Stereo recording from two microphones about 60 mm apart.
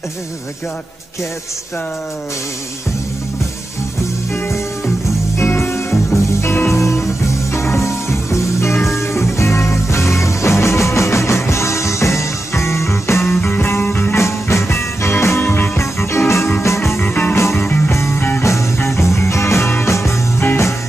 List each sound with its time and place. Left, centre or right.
5.4 s music: left
6.7 s music: left
13.4 s music: left
17.0 s music: left
17.4 s music: left
18.4 s music: left